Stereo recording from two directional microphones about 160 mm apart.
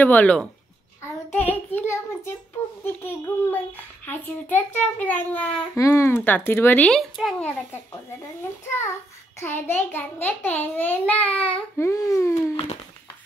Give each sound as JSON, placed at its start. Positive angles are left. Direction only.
{"t": 0.0, "sound": "a child's voice", "side_deg": 10}
{"t": 8.6, "sound": "a child's voice", "side_deg": 15}